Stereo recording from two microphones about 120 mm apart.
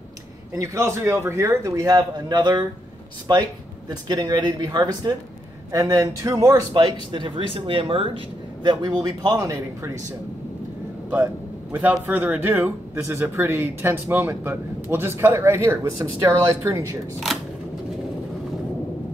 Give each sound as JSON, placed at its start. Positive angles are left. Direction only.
{"t": 0.6, "sound": "speech", "side_deg": -25}
{"t": 6.7, "sound": "speech", "side_deg": -40}
{"t": 8.6, "sound": "speech", "side_deg": -35}
{"t": 11.7, "sound": "a man's voice", "side_deg": -10}